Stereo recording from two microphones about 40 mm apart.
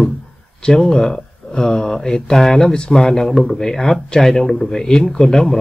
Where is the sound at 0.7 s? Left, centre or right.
Centre.